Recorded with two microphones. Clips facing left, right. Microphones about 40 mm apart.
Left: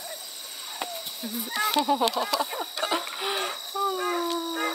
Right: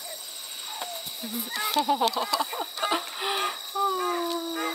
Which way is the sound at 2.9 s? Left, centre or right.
Centre.